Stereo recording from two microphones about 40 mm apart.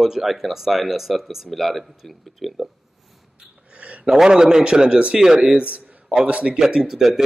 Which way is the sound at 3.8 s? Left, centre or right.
Right.